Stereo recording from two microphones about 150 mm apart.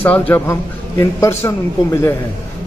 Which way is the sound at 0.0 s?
10° left (ahead or behind).